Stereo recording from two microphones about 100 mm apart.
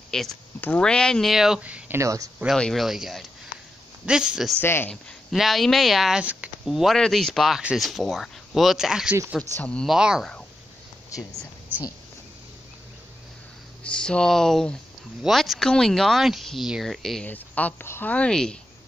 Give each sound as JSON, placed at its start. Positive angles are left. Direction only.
{"t": 0.1, "sound": "speech", "side_deg": 5}
{"t": 1.6, "sound": "speech", "side_deg": -15}
{"t": 2.0, "sound": "speech", "side_deg": -35}
{"t": 2.5, "sound": "speech", "side_deg": 5}
{"t": 4.6, "sound": "speech", "side_deg": 20}
{"t": 5.3, "sound": "speech", "side_deg": 0}
{"t": 9.4, "sound": "speech", "side_deg": 10}
{"t": 9.8, "sound": "speech", "side_deg": -5}
{"t": 11.7, "sound": "speech", "side_deg": -20}
{"t": 13.8, "sound": "speech", "side_deg": 10}
{"t": 17.3, "sound": "speech", "side_deg": 15}
{"t": 18.1, "sound": "speech", "side_deg": 10}